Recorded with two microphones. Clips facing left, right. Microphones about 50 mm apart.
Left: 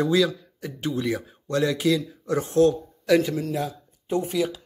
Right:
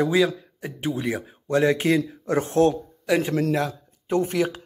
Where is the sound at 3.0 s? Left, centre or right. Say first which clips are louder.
Left 2 dB; right.